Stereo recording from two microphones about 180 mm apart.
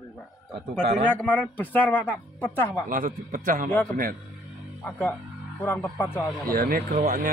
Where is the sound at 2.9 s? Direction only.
50° right (ahead or behind).